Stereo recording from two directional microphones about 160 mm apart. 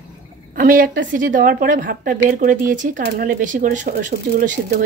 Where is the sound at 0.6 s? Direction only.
60° right (ahead or behind).